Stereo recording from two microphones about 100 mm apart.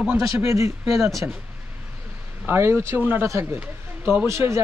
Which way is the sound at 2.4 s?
25° right (ahead or behind).